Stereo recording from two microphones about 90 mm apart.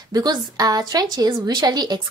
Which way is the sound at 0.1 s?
50° right (ahead or behind).